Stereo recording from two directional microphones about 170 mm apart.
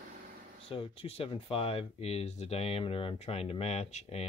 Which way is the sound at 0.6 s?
30° left (ahead or behind).